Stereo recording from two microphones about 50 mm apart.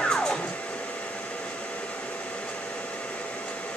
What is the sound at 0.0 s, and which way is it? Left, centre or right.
Hair dryer, centre.